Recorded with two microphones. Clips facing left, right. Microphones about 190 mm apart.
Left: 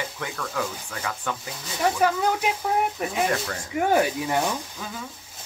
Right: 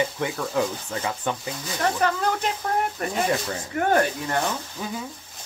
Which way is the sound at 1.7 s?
10° left (ahead or behind).